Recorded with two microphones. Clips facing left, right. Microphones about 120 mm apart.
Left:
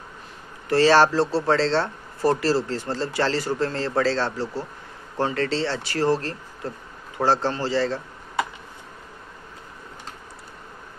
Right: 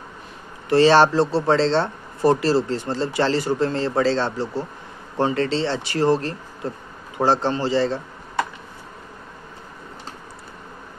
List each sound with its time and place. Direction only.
0.7 s speech: 20° right (ahead or behind)